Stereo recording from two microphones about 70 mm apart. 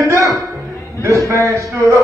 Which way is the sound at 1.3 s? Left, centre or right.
Right.